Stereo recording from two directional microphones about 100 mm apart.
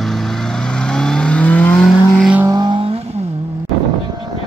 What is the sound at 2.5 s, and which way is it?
Vehicle, 50° right (ahead or behind).